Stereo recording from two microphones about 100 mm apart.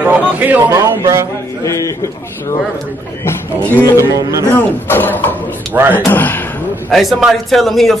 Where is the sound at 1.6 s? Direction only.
30° left (ahead or behind).